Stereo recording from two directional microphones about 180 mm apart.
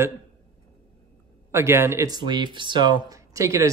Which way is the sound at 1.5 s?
15° right (ahead or behind).